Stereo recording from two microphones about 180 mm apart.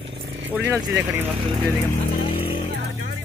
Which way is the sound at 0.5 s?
10° right (ahead or behind).